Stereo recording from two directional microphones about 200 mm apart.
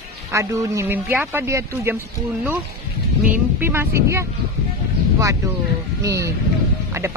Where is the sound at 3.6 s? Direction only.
10° right (ahead or behind).